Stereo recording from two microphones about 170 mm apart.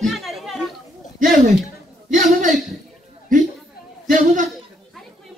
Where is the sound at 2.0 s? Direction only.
50° right (ahead or behind).